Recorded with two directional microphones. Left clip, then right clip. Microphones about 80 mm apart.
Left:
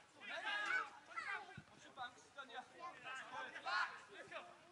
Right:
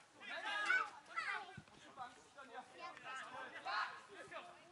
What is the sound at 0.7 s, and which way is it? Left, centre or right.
Children playing, right.